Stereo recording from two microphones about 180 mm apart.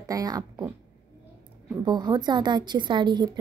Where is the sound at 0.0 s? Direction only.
20° right (ahead or behind).